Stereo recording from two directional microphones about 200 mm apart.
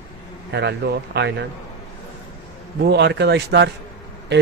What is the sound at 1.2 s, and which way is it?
Speech, 60° right (ahead or behind).